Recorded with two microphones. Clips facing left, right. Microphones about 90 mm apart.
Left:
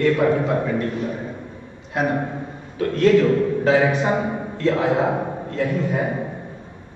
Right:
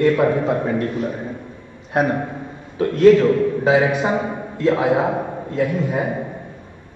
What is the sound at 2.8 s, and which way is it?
A man's voice, 15° right (ahead or behind).